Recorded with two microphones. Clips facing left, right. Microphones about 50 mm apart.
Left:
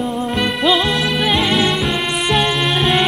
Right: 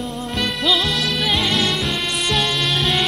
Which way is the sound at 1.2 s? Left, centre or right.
Centre.